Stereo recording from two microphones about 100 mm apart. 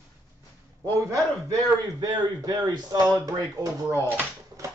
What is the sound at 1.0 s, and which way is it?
A man's voice, 35° right (ahead or behind).